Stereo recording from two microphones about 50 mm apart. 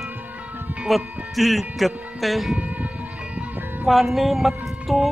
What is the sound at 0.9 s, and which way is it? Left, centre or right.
Speech, centre.